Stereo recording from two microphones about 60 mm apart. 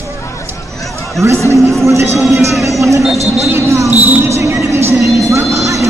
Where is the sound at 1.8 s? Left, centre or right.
Right.